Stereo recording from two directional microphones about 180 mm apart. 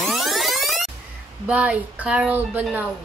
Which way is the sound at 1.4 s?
5° right (ahead or behind).